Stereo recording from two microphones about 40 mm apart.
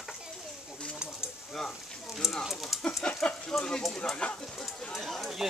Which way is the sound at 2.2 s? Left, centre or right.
Centre.